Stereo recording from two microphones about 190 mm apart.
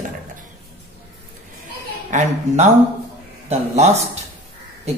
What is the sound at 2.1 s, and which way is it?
Speech, 40° right (ahead or behind).